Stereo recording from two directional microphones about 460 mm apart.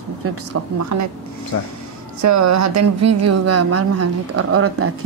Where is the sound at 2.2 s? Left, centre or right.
Right.